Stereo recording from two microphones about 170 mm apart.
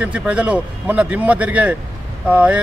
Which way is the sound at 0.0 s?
5° right (ahead or behind).